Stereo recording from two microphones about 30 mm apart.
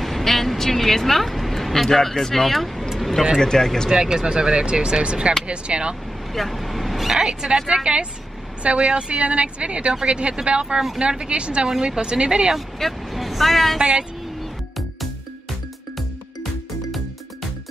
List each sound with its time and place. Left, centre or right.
0.0 s vehicle: centre
2.0 s speech: centre
3.3 s speech: centre
3.9 s speech: right
6.3 s vehicle: centre
7.1 s speech: centre
7.6 s speech: right
11.8 s speech: right
12.1 s speech: right
13.1 s vehicle: centre